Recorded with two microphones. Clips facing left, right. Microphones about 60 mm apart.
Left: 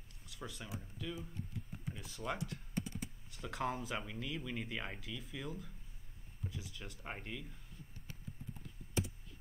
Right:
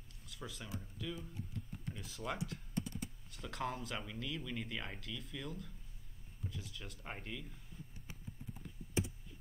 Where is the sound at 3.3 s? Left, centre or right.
Centre.